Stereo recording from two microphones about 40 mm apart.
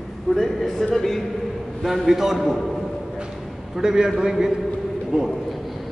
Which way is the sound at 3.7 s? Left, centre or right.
Centre.